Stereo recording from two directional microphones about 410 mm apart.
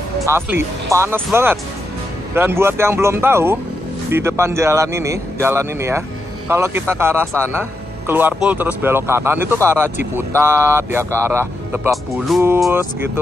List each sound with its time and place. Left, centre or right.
0.2 s speech: centre